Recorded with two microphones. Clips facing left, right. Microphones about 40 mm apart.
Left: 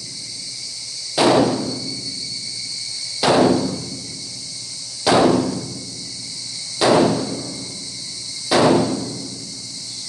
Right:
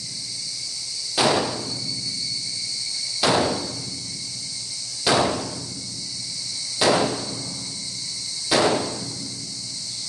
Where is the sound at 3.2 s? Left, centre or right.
Centre.